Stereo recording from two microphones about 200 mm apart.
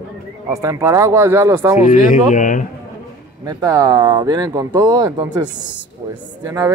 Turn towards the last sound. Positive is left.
turn(degrees=-15)  # may be behind; listen again after turning